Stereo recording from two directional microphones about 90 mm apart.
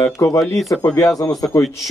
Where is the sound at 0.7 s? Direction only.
35° left (ahead or behind).